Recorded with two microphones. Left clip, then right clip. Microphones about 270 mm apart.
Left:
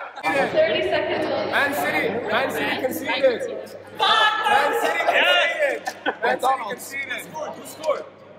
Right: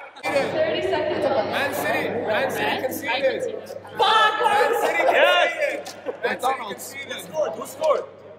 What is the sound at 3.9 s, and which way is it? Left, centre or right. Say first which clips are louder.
Choir: even; right.